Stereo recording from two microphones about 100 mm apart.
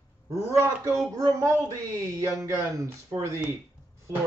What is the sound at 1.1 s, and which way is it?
Speech, 40° right (ahead or behind).